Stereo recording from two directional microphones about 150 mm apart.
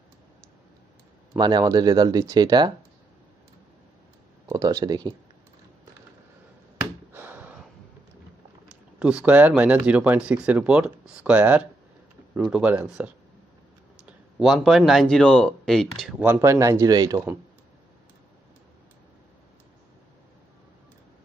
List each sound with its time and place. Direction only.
1.4 s speech: 25° right (ahead or behind)
4.5 s speech: 20° right (ahead or behind)
7.1 s gasp: 15° right (ahead or behind)
8.6 s speech: 5° right (ahead or behind)
16.3 s speech: 20° right (ahead or behind)